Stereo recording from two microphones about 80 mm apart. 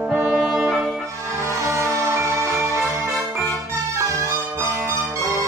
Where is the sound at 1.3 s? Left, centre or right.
Right.